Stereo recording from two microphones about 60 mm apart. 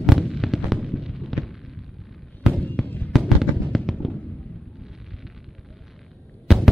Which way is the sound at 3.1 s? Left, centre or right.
Centre.